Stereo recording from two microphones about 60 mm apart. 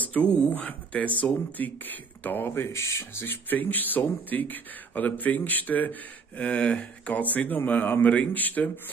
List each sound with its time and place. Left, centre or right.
0.0 s speech: left
6.4 s speech: centre